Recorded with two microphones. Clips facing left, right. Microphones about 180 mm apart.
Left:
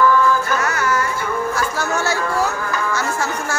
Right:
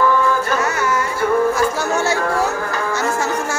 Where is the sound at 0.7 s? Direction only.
20° right (ahead or behind).